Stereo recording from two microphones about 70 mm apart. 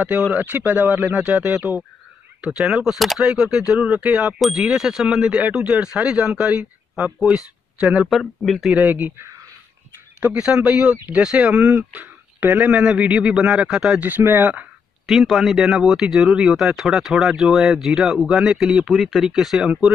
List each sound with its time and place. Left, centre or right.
0.3 s speech: right
2.8 s speech: centre
4.4 s speech: centre
8.0 s speech: centre
8.7 s speech: right
10.2 s speech: centre
13.9 s speech: right
15.0 s speech: centre